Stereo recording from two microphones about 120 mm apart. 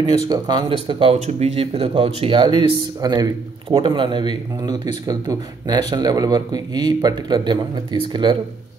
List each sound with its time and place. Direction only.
0.3 s speech: 35° right (ahead or behind)
1.2 s speech: 60° right (ahead or behind); by 3.3 s 35° right (ahead or behind)
3.6 s a man's voice: 50° right (ahead or behind)